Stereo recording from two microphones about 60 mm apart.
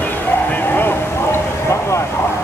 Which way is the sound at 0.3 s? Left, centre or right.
Left.